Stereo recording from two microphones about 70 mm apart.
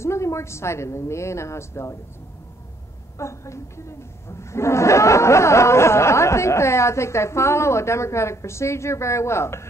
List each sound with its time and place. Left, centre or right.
0.0 s a woman's voice: left
3.2 s speech: left